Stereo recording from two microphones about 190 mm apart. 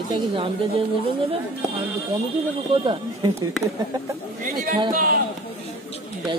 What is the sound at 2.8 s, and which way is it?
Speech, 25° right (ahead or behind).